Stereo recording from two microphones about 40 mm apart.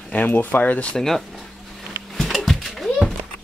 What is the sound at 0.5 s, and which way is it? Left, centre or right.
Speech, left.